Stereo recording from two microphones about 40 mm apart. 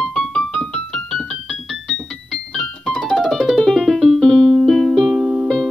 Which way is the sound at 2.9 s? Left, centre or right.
Centre.